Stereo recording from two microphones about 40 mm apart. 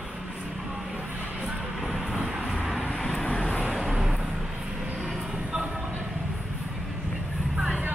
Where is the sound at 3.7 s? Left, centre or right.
Centre.